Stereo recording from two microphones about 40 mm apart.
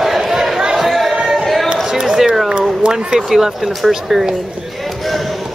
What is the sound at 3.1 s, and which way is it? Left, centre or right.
Speech, centre.